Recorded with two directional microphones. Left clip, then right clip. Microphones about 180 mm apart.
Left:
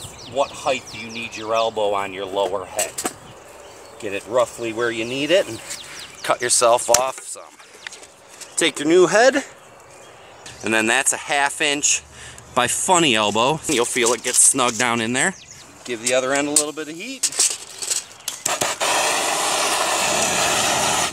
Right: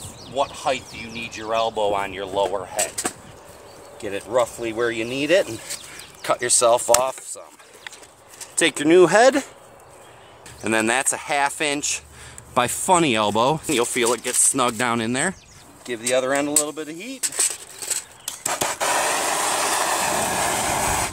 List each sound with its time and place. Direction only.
0.4 s speech: centre (ahead or behind)
4.0 s speech: 20° right (ahead or behind)
8.5 s speech: 45° right (ahead or behind); by 9.5 s 60° right (ahead or behind)
10.6 s speech: 30° right (ahead or behind)
13.7 s speech: 15° right (ahead or behind)
18.5 s a sound: centre (ahead or behind)